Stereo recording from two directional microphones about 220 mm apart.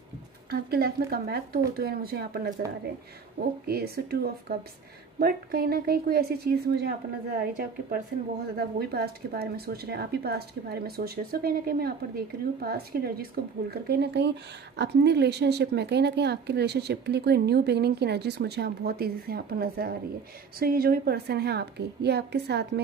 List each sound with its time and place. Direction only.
0.5 s speech: 45° right (ahead or behind)
8.5 s speech: 45° right (ahead or behind)